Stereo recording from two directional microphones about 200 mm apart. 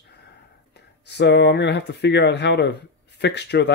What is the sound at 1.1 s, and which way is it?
Speech, 60° left (ahead or behind).